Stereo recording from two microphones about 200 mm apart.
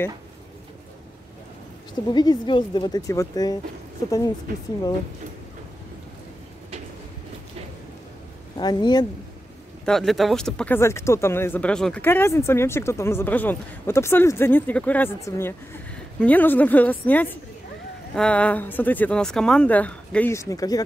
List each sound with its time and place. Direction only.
2.0 s speech: 20° left (ahead or behind)
8.5 s speech: 20° left (ahead or behind)
9.8 s speech: centre (ahead or behind); by 20.8 s 15° left (ahead or behind)